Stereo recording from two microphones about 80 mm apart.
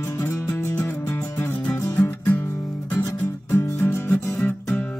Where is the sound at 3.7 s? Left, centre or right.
Left.